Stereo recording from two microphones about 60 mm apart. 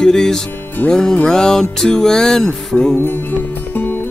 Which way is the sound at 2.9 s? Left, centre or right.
Left.